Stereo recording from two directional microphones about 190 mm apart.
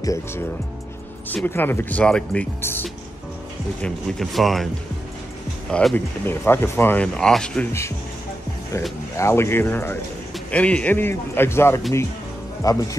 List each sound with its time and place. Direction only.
0.0 s speech: 15° left (ahead or behind)
3.8 s speech: centre (ahead or behind)
5.7 s speech: 5° left (ahead or behind)
9.1 s speech: 15° left (ahead or behind)